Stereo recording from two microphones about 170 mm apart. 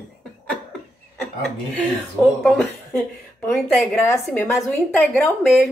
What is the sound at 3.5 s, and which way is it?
A woman's voice, 5° left (ahead or behind).